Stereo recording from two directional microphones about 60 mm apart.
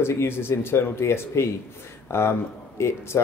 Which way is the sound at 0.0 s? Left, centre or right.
Left.